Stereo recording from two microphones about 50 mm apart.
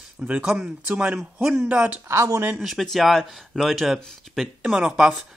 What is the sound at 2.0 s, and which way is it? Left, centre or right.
Speech, right.